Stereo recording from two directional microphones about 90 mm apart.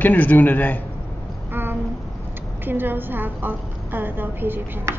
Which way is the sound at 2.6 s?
25° right (ahead or behind).